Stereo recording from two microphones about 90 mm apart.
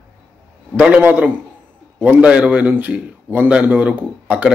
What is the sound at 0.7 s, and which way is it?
A man's voice, 15° right (ahead or behind).